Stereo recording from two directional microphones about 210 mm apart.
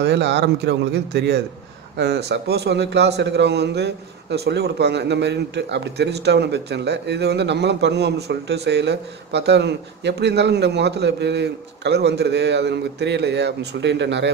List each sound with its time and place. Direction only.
0.0 s a man's voice: 55° right (ahead or behind)